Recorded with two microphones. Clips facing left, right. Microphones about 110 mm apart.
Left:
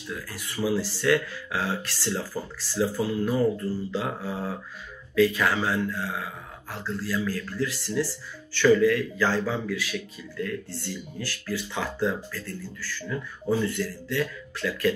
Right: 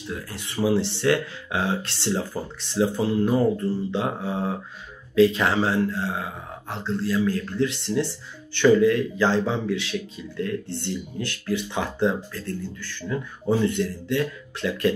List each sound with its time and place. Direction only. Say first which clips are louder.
0.1 s speech: right 2 dB; 25° right (ahead or behind)